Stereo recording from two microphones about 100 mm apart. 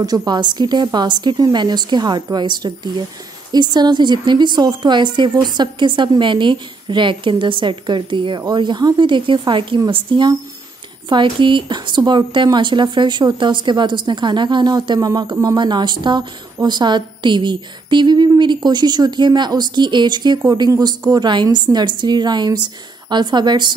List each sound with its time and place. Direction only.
0.0 s speech: 40° right (ahead or behind)